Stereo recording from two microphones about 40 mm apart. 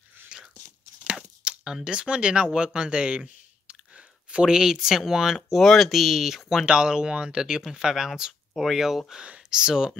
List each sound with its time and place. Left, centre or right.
0.3 s biting: right
1.4 s a sound: centre
1.9 s speech: right
4.5 s speech: centre
5.6 s speech: centre
5.9 s speech: centre
6.6 s speech: right
7.9 s speech: centre
9.2 s speech: right